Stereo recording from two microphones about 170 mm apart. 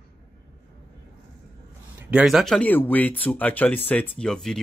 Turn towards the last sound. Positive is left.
turn(degrees=5)  # may be behind; listen again after turning